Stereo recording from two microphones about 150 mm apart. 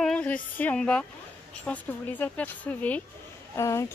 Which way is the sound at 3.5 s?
20° left (ahead or behind).